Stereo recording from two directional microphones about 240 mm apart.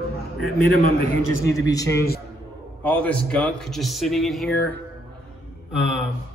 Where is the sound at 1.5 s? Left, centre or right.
Centre.